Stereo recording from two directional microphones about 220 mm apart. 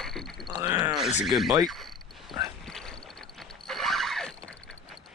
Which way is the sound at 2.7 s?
Centre (ahead or behind).